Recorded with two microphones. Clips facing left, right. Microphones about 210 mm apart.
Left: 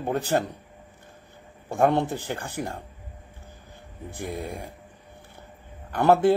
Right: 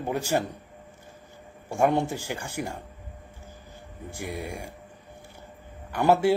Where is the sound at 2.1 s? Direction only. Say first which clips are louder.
Left 1 dB; 10° right (ahead or behind).